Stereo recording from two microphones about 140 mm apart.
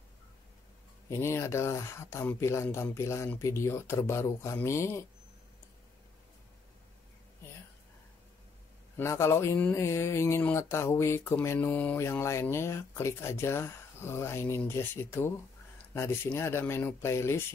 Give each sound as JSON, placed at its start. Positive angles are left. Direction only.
{"t": 1.1, "sound": "speech", "side_deg": 20}
{"t": 8.9, "sound": "speech", "side_deg": 20}